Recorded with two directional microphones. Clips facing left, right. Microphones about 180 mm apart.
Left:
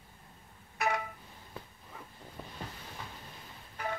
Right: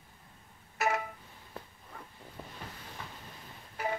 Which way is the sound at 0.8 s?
Centre (ahead or behind).